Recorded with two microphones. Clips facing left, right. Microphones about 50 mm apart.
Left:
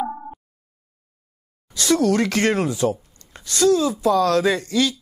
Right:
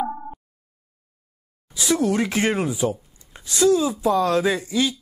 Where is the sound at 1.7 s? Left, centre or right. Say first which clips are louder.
Left 3 dB; centre.